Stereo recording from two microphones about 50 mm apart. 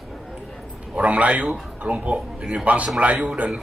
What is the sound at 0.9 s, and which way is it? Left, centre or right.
Speech, right.